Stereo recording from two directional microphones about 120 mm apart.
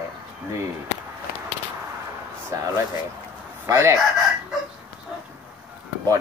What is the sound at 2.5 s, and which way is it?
Speech, 25° right (ahead or behind).